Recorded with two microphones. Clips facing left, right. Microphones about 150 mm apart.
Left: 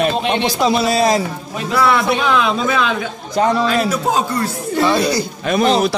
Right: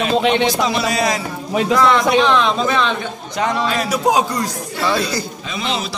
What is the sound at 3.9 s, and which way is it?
Speech, 15° right (ahead or behind).